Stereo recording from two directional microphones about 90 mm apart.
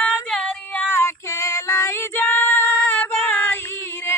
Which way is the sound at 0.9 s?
30° left (ahead or behind).